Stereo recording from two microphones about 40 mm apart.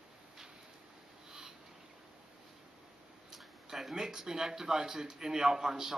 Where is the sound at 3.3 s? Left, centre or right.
Centre.